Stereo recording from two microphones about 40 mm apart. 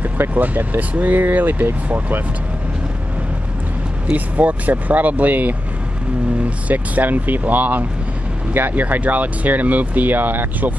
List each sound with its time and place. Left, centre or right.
0.3 s speech: right
4.1 s speech: right